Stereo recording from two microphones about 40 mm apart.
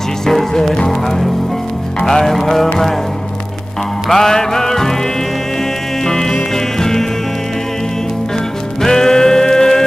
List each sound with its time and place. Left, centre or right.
0.3 s music: centre
4.1 s music: centre
6.0 s music: centre
8.8 s music: centre